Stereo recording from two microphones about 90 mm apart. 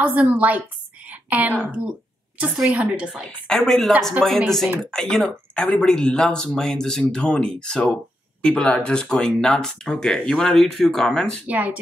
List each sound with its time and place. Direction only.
0.0 s a woman's voice: 15° right (ahead or behind)
3.3 s speech: 5° left (ahead or behind)
11.4 s a woman's voice: 15° right (ahead or behind)